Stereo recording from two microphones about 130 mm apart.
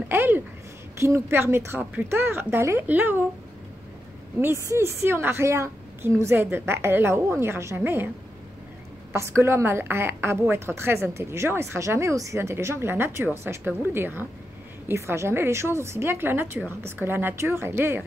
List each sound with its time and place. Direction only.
0.1 s speech: 15° right (ahead or behind)
4.6 s a woman's voice: 20° right (ahead or behind)
9.1 s a woman's voice: 20° right (ahead or behind)